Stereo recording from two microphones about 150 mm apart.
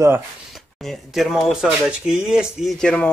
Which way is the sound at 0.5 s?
Centre (ahead or behind).